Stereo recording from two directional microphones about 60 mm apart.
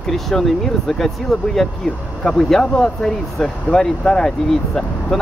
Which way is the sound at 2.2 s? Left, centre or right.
Centre.